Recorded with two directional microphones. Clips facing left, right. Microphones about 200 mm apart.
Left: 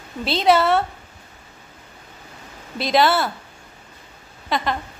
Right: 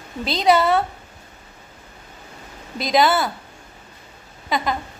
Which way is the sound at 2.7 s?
Centre (ahead or behind).